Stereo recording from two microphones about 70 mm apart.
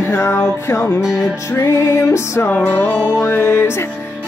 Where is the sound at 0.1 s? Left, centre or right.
Left.